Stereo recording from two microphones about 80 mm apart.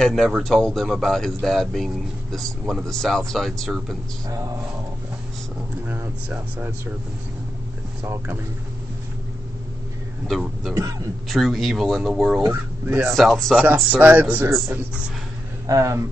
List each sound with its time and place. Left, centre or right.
0.0 s speech: centre
8.0 s speech: right
10.2 s speech: centre
10.7 s speech: right
11.2 s speech: centre
12.8 s speech: right
13.1 s speech: centre
13.9 s speech: centre
15.6 s speech: right